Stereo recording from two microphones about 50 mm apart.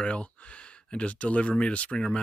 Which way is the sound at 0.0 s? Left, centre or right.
Left.